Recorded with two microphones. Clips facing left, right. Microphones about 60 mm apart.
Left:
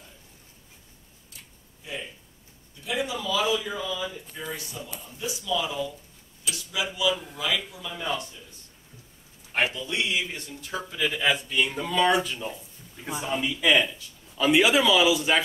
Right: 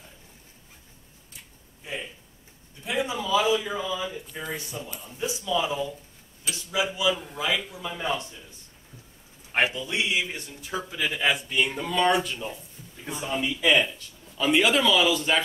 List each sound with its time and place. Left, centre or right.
2.8 s a man's voice: right
9.5 s a sound: right
9.9 s speech: centre